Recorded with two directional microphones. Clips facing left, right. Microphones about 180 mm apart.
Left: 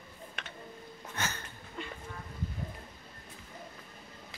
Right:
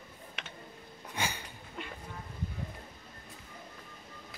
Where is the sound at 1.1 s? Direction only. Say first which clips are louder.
Right 2 dB; 10° right (ahead or behind).